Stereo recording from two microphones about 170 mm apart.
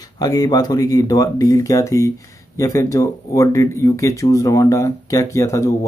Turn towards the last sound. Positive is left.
turn(degrees=15)  # may be behind; listen again after turning